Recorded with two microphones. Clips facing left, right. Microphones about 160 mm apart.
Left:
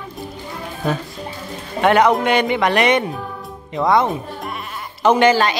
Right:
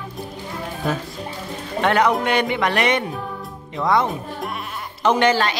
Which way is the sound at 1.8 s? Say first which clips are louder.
Left 4 dB; 15° left (ahead or behind).